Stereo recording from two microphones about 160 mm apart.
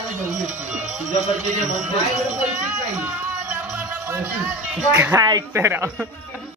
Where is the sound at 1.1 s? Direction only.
50° left (ahead or behind).